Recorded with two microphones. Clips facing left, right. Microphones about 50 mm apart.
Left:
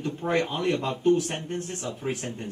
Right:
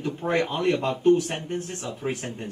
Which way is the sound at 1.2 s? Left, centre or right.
Centre.